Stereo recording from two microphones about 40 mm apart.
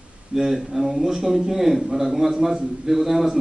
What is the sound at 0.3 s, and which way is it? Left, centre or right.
Speech, centre.